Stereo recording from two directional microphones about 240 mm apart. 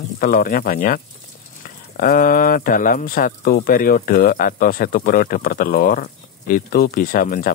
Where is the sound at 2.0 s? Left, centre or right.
Left.